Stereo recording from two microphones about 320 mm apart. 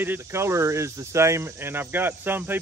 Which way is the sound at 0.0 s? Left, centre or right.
Centre.